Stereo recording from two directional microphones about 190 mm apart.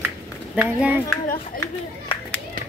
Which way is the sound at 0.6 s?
5° right (ahead or behind).